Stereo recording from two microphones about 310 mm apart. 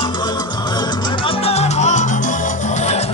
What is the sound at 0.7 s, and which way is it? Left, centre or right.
Salsa music, centre.